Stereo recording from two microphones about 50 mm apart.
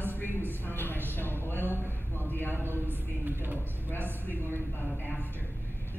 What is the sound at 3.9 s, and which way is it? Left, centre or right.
A woman's voice, left.